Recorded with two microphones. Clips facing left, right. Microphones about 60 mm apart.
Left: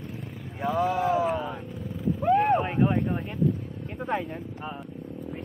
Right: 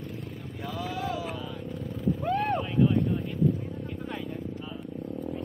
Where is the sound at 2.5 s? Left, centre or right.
Left.